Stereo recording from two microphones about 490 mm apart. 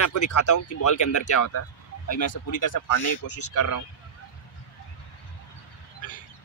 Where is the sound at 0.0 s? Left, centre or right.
Left.